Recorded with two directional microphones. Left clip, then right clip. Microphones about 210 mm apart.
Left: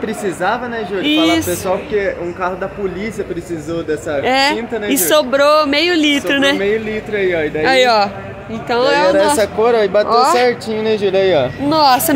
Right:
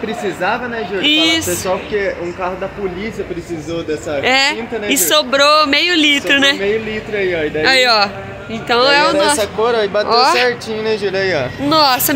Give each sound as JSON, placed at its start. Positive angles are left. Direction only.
{"t": 0.2, "sound": "speech", "side_deg": 15}
{"t": 3.7, "sound": "speech", "side_deg": 15}
{"t": 7.6, "sound": "speech", "side_deg": 10}
{"t": 9.4, "sound": "speech", "side_deg": 45}
{"t": 10.0, "sound": "speech", "side_deg": 5}
{"t": 10.4, "sound": "speech", "side_deg": 40}
{"t": 11.7, "sound": "speech", "side_deg": 5}